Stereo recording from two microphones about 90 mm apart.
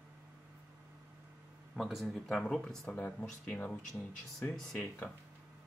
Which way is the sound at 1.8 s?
5° right (ahead or behind).